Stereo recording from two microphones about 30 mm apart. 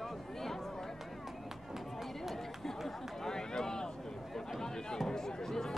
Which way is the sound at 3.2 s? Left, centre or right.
Left.